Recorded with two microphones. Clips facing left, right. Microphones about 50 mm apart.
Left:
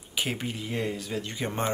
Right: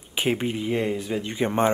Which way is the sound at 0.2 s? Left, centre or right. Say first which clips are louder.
Right 7 dB; right.